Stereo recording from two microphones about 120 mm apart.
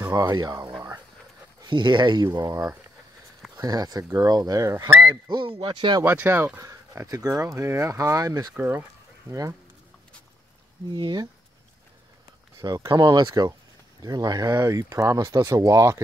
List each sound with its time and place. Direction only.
0.1 s speech: 30° right (ahead or behind)
5.3 s speech: 45° right (ahead or behind)
6.0 s speech: 20° right (ahead or behind)
8.5 s speech: 15° right (ahead or behind)
10.9 s speech: 40° right (ahead or behind)
12.5 s speech: 30° right (ahead or behind)